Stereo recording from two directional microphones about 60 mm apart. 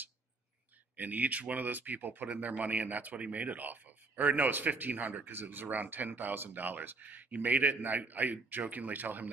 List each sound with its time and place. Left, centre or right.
0.9 s speech: right